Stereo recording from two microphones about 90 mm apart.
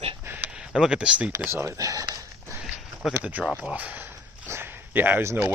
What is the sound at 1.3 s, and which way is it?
Speech, 25° right (ahead or behind).